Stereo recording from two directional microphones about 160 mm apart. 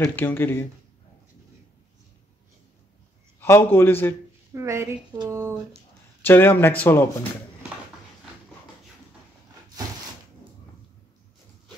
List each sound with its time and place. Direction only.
0.0 s speech: 15° left (ahead or behind)
3.3 s a man's voice: 15° left (ahead or behind)
4.6 s speech: 20° right (ahead or behind)
6.2 s speech: 15° left (ahead or behind)